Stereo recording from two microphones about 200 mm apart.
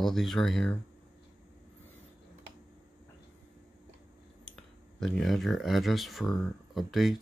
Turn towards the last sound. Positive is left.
turn(degrees=0)  # may be behind; listen again after turning